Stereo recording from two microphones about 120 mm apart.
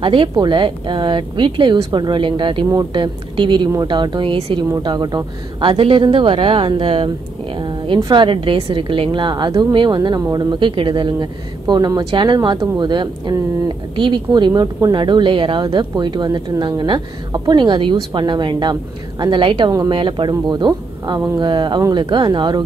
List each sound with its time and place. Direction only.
0.0 s speech: 45° right (ahead or behind)
7.5 s a sound: 45° right (ahead or behind)
8.0 s speech: 40° right (ahead or behind)